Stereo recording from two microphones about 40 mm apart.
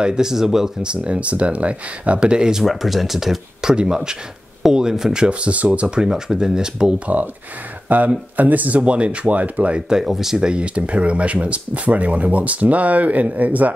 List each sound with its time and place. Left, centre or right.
0.0 s speech: centre
0.8 s speech: right
2.6 s speech: centre
3.7 s speech: centre
5.3 s speech: right
5.9 s speech: centre
7.9 s speech: right
9.8 s speech: centre
10.4 s speech: right